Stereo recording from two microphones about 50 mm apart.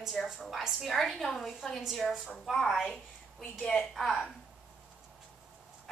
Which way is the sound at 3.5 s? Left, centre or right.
Centre.